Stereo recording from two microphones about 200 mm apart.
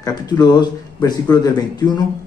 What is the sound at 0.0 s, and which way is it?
Speech, 20° left (ahead or behind).